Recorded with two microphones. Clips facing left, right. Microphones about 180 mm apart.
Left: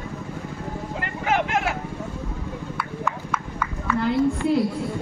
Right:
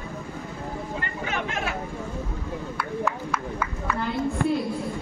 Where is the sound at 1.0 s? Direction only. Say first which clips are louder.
Left 10 dB; 90° left.